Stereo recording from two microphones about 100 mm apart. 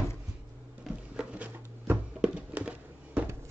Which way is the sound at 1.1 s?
15° right (ahead or behind).